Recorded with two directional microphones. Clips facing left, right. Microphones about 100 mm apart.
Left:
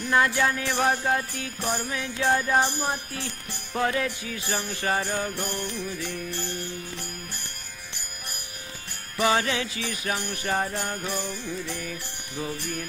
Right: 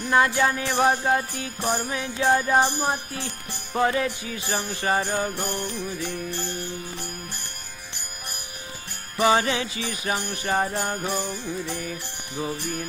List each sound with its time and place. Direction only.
0.0 s music: 15° right (ahead or behind)
2.6 s jingle bell: 25° right (ahead or behind)
3.7 s music: 15° right (ahead or behind)
5.6 s jingle bell: 25° right (ahead or behind)
9.1 s music: 15° right (ahead or behind)
10.7 s jingle bell: 25° right (ahead or behind)
11.2 s music: 20° right (ahead or behind)